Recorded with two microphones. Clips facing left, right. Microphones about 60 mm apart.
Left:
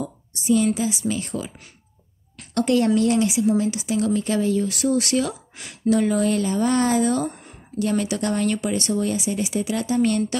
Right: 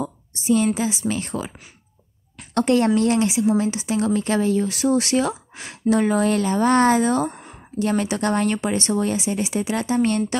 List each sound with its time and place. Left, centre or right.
0.0 s a sound: right
0.8 s speech: right
2.5 s speech: right
4.6 s speech: right